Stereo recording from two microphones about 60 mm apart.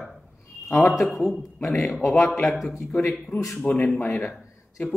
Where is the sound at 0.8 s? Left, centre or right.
Centre.